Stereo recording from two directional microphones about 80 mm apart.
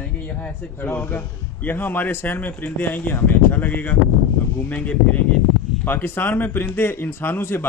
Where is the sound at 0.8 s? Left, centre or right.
Left.